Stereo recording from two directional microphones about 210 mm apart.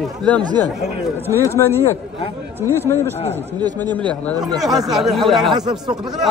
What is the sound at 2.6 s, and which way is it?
Speech, 10° right (ahead or behind).